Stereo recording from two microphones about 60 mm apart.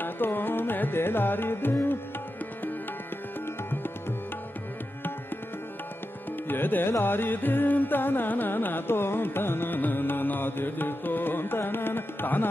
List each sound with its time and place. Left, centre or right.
0.0 s carnatic music: left
6.5 s carnatic music: left